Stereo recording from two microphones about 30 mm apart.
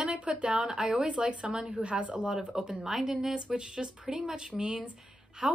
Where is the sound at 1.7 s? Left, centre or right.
Right.